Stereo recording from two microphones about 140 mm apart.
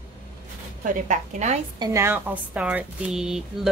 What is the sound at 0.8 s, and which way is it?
Speech, 60° right (ahead or behind).